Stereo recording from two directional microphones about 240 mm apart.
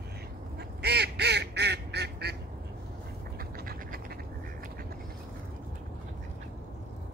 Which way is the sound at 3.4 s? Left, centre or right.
Right.